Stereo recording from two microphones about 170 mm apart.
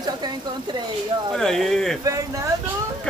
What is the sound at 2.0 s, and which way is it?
Speech, 20° right (ahead or behind).